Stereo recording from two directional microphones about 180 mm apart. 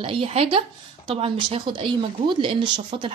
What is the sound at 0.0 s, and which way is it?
Speech, 30° right (ahead or behind).